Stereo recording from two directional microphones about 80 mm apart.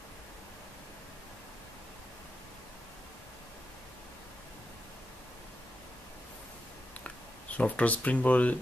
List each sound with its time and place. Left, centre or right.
7.5 s speech: centre